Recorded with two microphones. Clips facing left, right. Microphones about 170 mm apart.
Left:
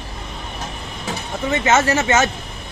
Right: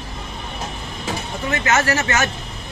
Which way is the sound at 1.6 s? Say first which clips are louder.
Left 3 dB; 25° left (ahead or behind).